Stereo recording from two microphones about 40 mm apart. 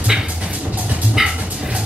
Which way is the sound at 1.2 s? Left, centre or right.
Centre.